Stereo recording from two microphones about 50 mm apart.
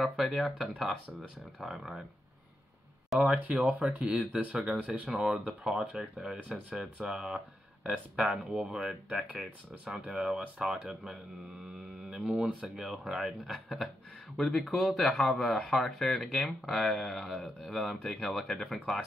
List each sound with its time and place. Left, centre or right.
0.0 s speech: centre
3.3 s speech: right
5.0 s speech: centre
6.5 s speech: centre
13.5 s speech: centre